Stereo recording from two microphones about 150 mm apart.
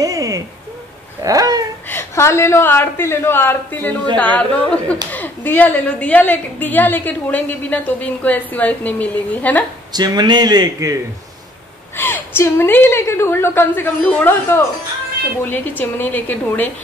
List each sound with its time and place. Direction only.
0.0 s a sound: 20° right (ahead or behind)
1.9 s a woman's voice: 15° left (ahead or behind)
9.9 s a man's voice: 30° right (ahead or behind)
12.0 s a woman's voice: 15° left (ahead or behind)
15.8 s a woman's voice: 10° left (ahead or behind)